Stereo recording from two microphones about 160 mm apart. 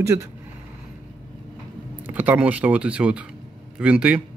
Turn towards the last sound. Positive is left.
turn(degrees=-5)  # may be behind; listen again after turning